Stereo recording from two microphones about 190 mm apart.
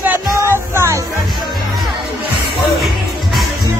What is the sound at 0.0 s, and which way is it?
Music, 15° right (ahead or behind).